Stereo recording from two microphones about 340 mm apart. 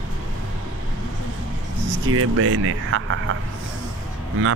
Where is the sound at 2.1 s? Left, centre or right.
Right.